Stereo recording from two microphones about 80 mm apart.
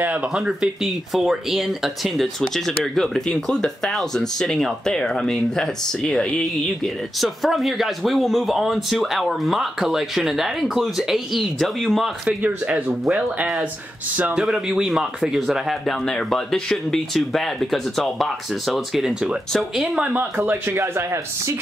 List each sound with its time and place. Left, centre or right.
0.5 s speech: centre
14.1 s speech: centre